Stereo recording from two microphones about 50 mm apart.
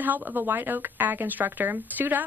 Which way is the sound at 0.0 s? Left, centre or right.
Right.